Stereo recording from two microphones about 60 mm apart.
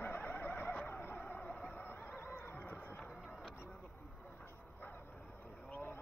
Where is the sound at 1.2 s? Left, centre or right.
Centre.